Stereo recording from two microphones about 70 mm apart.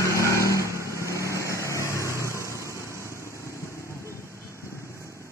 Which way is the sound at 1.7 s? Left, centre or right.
Left.